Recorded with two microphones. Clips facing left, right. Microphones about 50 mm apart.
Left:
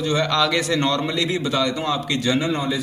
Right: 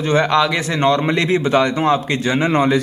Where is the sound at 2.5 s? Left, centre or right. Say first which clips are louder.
Right 7 dB; right.